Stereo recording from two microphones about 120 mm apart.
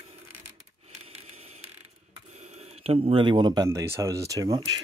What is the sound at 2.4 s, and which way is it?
Speech, 65° right (ahead or behind).